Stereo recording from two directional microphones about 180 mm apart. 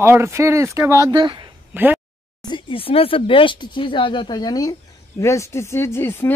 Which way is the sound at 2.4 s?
30° left (ahead or behind).